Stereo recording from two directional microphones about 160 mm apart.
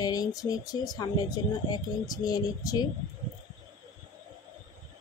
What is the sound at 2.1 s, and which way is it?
Speech, 25° left (ahead or behind).